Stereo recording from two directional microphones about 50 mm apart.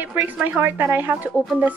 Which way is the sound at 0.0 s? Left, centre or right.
Right.